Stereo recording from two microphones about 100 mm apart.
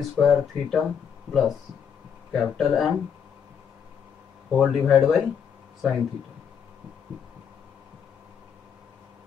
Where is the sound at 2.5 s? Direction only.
Centre (ahead or behind).